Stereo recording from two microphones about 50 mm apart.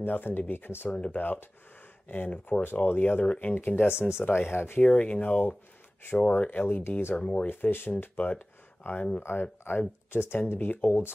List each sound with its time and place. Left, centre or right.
0.0 s speech: left
2.6 s speech: left
3.5 s speech: left
4.8 s speech: left
7.2 s speech: left
7.7 s speech: left
9.2 s speech: left
10.7 s speech: left